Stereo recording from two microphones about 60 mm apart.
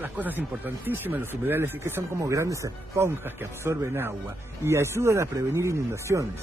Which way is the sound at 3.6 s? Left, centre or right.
Right.